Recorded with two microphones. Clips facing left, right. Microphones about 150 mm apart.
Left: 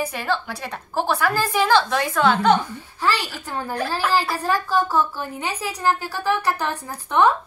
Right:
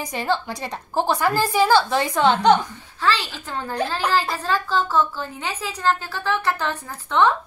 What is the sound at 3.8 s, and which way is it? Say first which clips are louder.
Speech: right 2 dB; 20° right (ahead or behind).